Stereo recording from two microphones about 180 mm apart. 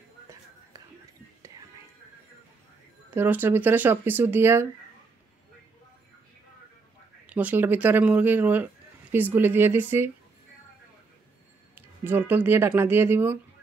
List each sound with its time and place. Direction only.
3.1 s speech: 10° right (ahead or behind)
7.2 s speech: 10° right (ahead or behind)
11.7 s speech: 10° right (ahead or behind)